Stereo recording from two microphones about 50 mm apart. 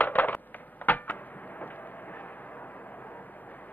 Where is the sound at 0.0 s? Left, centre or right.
Left.